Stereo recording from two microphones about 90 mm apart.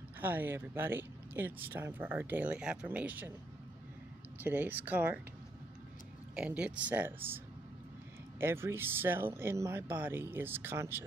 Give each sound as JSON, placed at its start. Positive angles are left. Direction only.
{"t": 0.2, "sound": "speech", "side_deg": -20}
{"t": 4.4, "sound": "speech", "side_deg": -20}
{"t": 6.3, "sound": "speech", "side_deg": -10}